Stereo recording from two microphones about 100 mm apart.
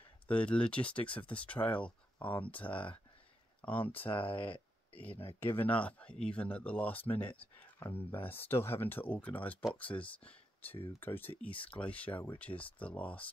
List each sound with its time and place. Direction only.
0.3 s speech: 10° left (ahead or behind)
2.7 s speech: 60° left (ahead or behind)
4.1 s speech: 60° left (ahead or behind)
5.4 s speech: 20° left (ahead or behind)